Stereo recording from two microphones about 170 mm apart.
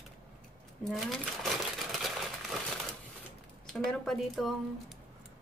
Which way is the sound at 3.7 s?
Centre (ahead or behind).